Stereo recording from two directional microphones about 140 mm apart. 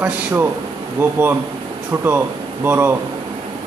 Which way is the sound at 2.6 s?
15° right (ahead or behind).